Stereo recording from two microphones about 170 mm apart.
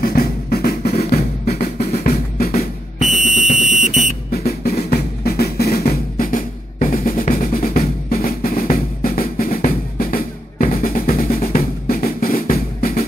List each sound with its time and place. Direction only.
0.0 s drum: 60° left (ahead or behind)
3.1 s fire alarm: centre (ahead or behind)
3.8 s music: 40° left (ahead or behind)
4.3 s drum: 65° left (ahead or behind)